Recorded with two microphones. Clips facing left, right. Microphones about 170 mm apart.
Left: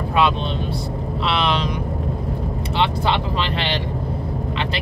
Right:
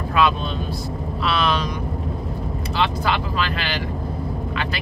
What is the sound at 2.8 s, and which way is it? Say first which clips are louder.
Speech: left 2 dB; 25° left (ahead or behind).